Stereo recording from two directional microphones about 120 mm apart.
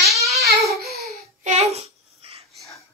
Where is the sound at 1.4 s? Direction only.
70° right (ahead or behind).